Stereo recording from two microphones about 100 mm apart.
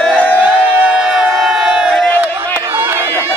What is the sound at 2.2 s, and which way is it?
Crowd, 20° right (ahead or behind).